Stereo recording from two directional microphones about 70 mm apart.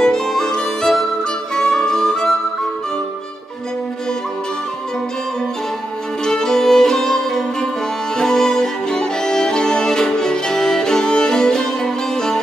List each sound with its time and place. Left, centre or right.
0.0 s music: centre
1.5 s harmonica: centre
6.2 s music: centre
8.2 s violin: centre